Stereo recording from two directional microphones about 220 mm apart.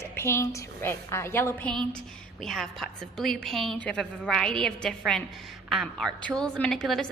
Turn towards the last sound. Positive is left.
turn(degrees=0)  # may be behind; listen again after turning